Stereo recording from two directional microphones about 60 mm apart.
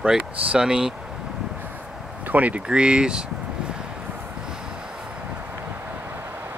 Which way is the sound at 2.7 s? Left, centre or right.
Centre.